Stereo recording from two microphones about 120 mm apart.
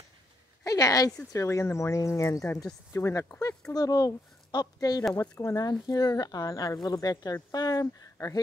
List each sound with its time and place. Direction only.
0.7 s speech: 30° left (ahead or behind)